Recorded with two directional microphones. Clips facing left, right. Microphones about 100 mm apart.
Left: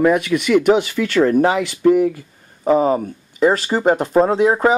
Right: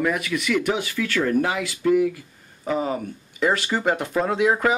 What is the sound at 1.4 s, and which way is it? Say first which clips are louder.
Speech: left 8 dB; 60° left (ahead or behind).